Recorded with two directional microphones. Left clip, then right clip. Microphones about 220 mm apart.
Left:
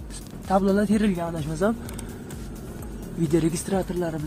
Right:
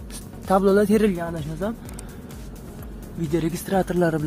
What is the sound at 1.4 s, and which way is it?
Speech, 10° left (ahead or behind).